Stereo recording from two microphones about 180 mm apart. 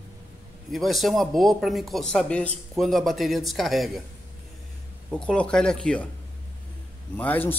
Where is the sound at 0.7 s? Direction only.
Centre (ahead or behind).